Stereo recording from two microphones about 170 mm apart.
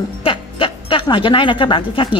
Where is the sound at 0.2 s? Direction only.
30° left (ahead or behind).